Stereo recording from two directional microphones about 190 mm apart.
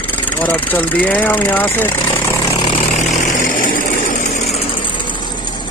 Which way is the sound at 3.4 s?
45° left (ahead or behind).